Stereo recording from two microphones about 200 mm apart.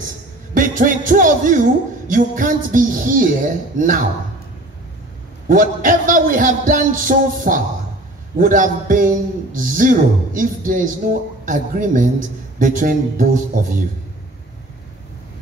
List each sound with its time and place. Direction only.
0.6 s a man's voice: 40° right (ahead or behind)
5.5 s a man's voice: 40° right (ahead or behind)